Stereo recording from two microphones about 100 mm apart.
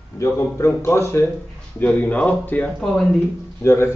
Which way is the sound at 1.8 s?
15° left (ahead or behind).